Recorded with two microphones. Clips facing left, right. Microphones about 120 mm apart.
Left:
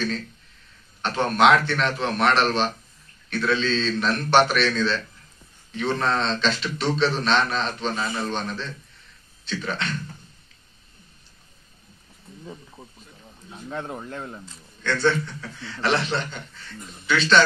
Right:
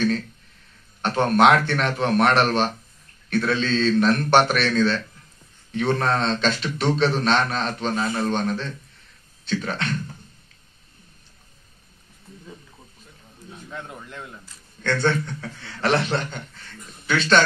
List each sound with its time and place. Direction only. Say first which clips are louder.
1.0 s a man's voice: right 2 dB; 45° right (ahead or behind)
13.7 s speech: left 6 dB; 30° left (ahead or behind)
14.8 s a man's voice: even; 50° right (ahead or behind)